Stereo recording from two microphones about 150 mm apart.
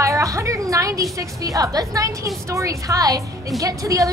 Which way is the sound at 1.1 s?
20° right (ahead or behind).